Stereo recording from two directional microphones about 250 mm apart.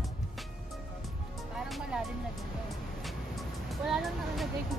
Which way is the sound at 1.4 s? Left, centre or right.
Centre.